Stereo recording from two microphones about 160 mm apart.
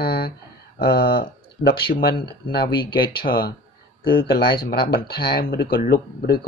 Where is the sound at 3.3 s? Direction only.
65° left (ahead or behind).